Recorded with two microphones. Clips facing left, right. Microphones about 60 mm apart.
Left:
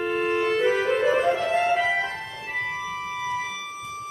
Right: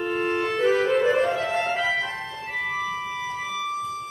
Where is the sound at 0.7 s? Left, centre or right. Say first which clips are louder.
Right 1 dB; centre.